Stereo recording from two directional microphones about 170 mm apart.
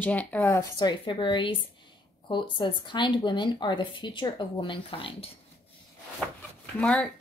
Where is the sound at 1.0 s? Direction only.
30° left (ahead or behind).